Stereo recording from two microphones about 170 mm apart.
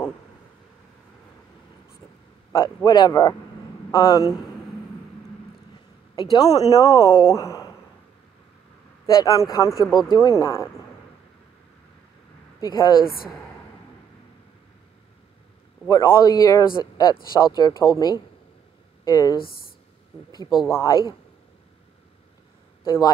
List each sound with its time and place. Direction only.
2.5 s speech: 20° left (ahead or behind)
6.1 s speech: 20° left (ahead or behind)
9.0 s speech: 20° left (ahead or behind)
12.5 s speech: 20° left (ahead or behind)
13.0 s speech: 60° left (ahead or behind)
15.9 s speech: 20° left (ahead or behind)
19.4 s speech: 60° left (ahead or behind)
20.7 s speech: 20° left (ahead or behind)
22.8 s speech: 20° left (ahead or behind)